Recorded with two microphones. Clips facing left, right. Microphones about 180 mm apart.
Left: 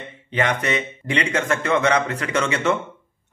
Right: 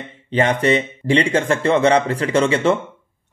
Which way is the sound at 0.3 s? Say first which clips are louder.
Right 6 dB; 30° right (ahead or behind).